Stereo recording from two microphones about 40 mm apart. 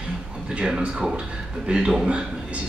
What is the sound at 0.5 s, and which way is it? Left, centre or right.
Speech, right.